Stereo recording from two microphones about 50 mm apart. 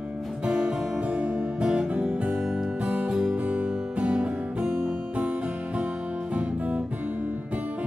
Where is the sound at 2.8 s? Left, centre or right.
Right.